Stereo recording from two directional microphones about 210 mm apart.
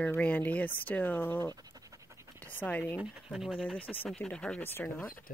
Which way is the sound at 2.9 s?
5° right (ahead or behind).